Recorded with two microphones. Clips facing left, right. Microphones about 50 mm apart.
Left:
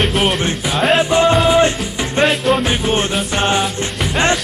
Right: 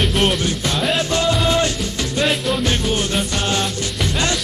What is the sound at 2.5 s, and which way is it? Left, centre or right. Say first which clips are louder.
Music: left 4 dB; left.